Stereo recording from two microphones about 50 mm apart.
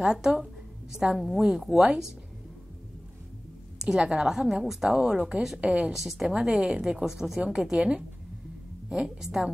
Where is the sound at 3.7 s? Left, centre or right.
Centre.